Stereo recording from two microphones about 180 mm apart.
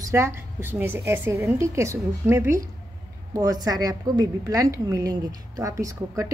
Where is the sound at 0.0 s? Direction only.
15° right (ahead or behind).